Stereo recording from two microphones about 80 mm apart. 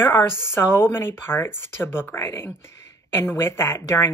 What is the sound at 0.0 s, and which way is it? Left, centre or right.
Speech, left.